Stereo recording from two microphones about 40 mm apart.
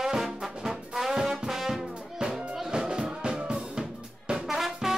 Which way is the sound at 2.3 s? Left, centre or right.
Centre.